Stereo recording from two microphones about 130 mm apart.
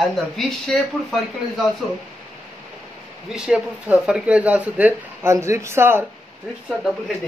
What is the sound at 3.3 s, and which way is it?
Speech, 5° right (ahead or behind).